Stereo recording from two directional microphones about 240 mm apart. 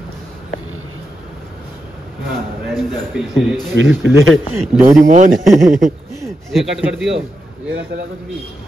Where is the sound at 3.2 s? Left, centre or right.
Centre.